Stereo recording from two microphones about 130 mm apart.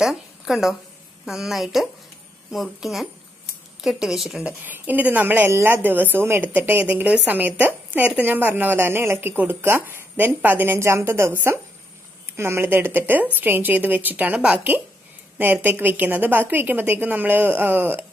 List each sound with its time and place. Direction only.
0.0 s a woman's voice: 5° right (ahead or behind)